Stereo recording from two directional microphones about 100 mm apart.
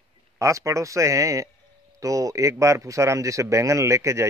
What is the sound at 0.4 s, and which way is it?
A man's voice, 30° right (ahead or behind).